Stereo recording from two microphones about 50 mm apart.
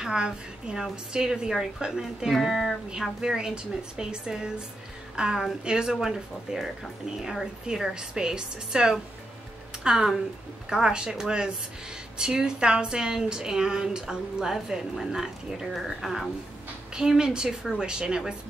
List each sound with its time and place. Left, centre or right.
0.0 s a woman's voice: centre
16.9 s a woman's voice: centre